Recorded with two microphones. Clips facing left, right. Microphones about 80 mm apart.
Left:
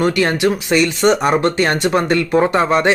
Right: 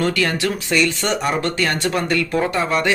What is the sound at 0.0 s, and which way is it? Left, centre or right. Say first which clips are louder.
Speech: left 5 dB; left.